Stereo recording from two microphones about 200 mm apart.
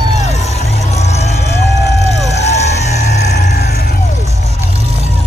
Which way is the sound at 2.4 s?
35° left (ahead or behind).